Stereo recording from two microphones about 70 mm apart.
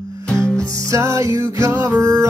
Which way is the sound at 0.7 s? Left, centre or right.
Right.